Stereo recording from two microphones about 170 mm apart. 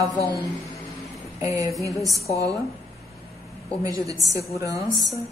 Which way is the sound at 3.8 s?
20° right (ahead or behind).